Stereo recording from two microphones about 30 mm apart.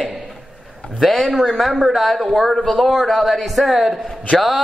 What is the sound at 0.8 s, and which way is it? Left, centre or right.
Speech, left.